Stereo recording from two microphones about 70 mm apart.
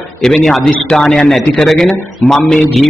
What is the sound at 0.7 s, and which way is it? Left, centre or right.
A man's voice, centre.